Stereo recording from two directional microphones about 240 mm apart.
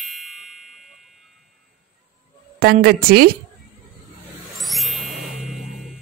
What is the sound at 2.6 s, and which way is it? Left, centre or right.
Speech, right.